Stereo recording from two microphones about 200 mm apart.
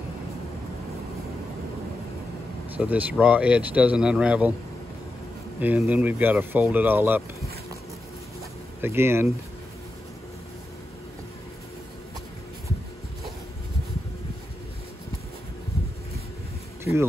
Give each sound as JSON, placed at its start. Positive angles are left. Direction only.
{"t": 2.8, "sound": "speech", "side_deg": -5}
{"t": 5.6, "sound": "speech", "side_deg": -10}
{"t": 8.8, "sound": "speech", "side_deg": -10}